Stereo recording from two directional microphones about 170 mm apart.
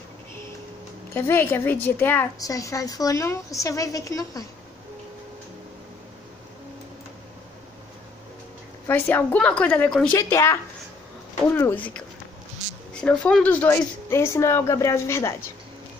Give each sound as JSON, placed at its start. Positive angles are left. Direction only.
{"t": 1.1, "sound": "a woman's voice", "side_deg": 15}
{"t": 8.8, "sound": "speech", "side_deg": 10}
{"t": 10.1, "sound": "speech", "side_deg": 15}
{"t": 13.0, "sound": "speech", "side_deg": 10}